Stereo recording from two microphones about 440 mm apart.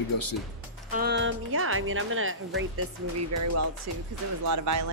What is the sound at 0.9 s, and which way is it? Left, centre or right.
Speech, right.